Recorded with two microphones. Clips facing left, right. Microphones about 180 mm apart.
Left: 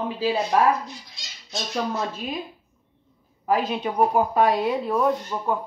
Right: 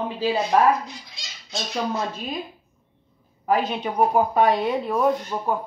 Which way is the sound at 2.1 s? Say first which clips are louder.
Even; 5° left (ahead or behind).